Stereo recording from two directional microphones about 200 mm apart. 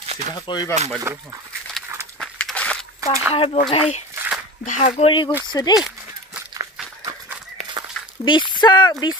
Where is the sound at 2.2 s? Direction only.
5° left (ahead or behind).